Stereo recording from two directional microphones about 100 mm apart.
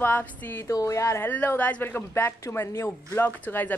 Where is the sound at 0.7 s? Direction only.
35° left (ahead or behind).